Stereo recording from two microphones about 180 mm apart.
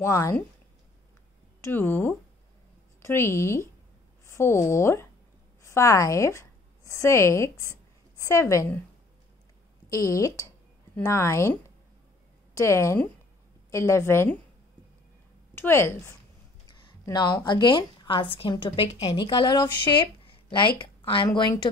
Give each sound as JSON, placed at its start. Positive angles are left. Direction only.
{"t": 0.0, "sound": "a woman's voice", "side_deg": 15}
{"t": 1.6, "sound": "a woman's voice", "side_deg": 10}
{"t": 9.8, "sound": "a woman's voice", "side_deg": 15}
{"t": 12.5, "sound": "a woman's voice", "side_deg": 15}
{"t": 15.5, "sound": "a woman's voice", "side_deg": 15}
{"t": 16.6, "sound": "a sound", "side_deg": 25}
{"t": 17.5, "sound": "a woman's voice", "side_deg": 25}
{"t": 20.2, "sound": "a sound", "side_deg": 25}